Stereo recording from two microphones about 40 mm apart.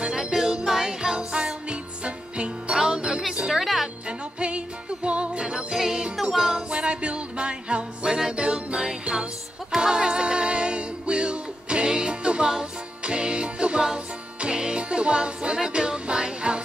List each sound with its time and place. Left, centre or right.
0.0 s music: centre
2.7 s jingle bell: centre
3.4 s music: centre
4.4 s jingle bell: right
5.9 s music: right